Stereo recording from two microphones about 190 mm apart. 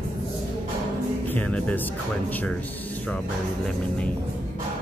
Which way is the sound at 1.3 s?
5° left (ahead or behind).